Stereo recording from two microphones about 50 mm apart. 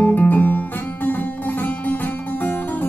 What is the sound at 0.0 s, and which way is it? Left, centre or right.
Music, left.